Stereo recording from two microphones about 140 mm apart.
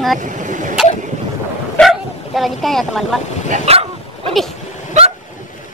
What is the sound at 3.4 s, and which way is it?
Dog, 45° right (ahead or behind).